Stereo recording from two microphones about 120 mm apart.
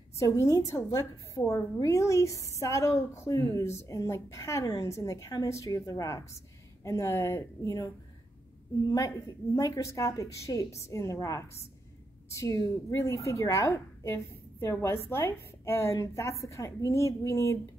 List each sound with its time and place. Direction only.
0.2 s a woman's voice: 30° left (ahead or behind)
9.6 s a woman's voice: 25° left (ahead or behind)